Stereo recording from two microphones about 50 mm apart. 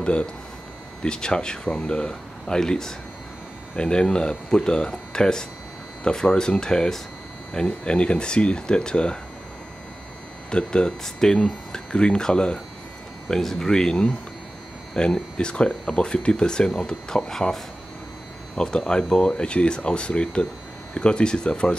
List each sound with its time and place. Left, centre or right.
0.0 s speech: left
10.5 s speech: centre
18.6 s speech: centre